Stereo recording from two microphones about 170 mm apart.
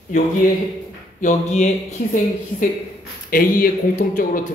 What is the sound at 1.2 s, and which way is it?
Speech, 45° left (ahead or behind).